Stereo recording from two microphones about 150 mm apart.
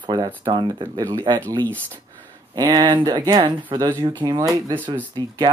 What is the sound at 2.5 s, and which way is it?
Speech, 25° right (ahead or behind).